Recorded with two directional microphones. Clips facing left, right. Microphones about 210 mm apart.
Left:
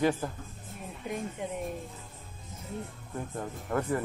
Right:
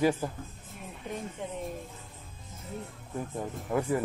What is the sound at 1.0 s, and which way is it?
Speech, 10° left (ahead or behind).